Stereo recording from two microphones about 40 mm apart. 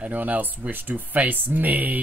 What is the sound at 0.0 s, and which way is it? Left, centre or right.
Speech, right.